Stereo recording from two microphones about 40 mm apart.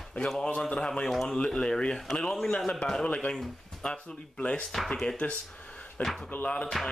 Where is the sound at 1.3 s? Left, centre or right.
Centre.